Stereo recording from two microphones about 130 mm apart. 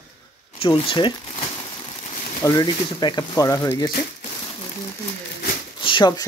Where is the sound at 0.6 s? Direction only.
45° left (ahead or behind).